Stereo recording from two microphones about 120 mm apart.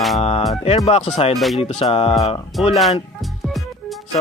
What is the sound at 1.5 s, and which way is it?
Speech, 55° left (ahead or behind).